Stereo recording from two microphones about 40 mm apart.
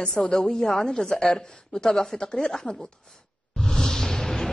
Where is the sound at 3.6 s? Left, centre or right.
Centre.